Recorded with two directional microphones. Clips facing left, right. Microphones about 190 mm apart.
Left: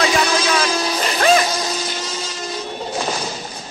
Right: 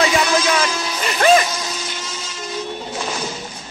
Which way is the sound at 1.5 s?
35° left (ahead or behind).